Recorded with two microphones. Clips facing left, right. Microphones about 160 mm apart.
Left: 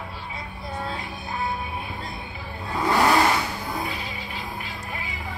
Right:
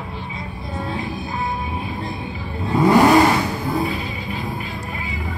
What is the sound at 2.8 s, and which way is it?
Vehicle, 15° right (ahead or behind).